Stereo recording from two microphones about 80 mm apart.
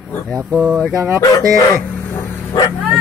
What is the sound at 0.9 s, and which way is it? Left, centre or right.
Speech, right.